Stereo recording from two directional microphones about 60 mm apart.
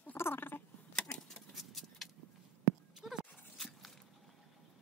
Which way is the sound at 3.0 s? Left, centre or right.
Centre.